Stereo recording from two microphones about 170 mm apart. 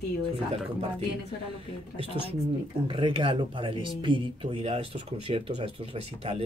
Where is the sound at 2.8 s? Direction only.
30° right (ahead or behind).